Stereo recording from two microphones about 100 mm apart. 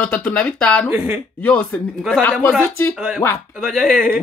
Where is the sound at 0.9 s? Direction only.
20° right (ahead or behind).